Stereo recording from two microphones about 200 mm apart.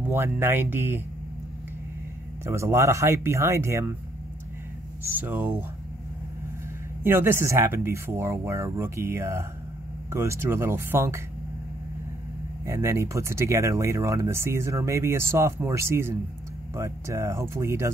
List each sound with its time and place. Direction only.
0.0 s speech: 10° right (ahead or behind)
2.4 s speech: 15° right (ahead or behind)
5.1 s speech: 10° right (ahead or behind)
7.0 s speech: 10° right (ahead or behind)
12.6 s speech: 15° right (ahead or behind)